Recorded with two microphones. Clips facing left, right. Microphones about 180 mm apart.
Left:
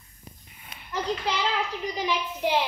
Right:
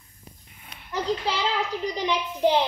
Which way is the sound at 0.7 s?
Centre (ahead or behind).